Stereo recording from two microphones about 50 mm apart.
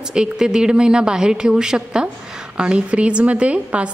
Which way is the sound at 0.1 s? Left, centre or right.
Centre.